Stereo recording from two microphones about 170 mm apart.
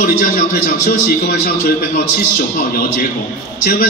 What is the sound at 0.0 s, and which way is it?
A man's voice, 55° left (ahead or behind).